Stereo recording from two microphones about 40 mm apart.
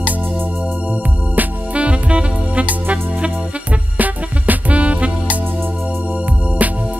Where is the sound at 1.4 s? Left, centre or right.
Right.